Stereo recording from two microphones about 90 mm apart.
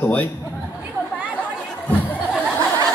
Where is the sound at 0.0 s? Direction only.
15° left (ahead or behind).